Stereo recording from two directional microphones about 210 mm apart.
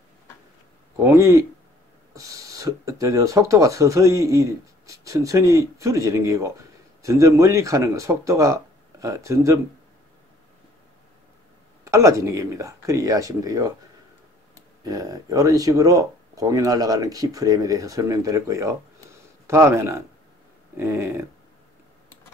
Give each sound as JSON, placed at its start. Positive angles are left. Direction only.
{"t": 1.0, "sound": "speech", "side_deg": -15}
{"t": 11.8, "sound": "speech", "side_deg": -15}
{"t": 14.8, "sound": "speech", "side_deg": -15}